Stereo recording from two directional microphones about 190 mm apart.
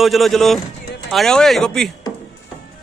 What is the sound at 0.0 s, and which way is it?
Speech, centre (ahead or behind).